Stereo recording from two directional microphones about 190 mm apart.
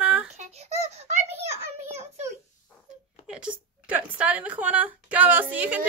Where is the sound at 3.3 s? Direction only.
5° right (ahead or behind).